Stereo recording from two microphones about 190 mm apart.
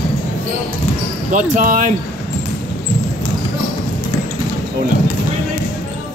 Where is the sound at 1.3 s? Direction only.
45° right (ahead or behind).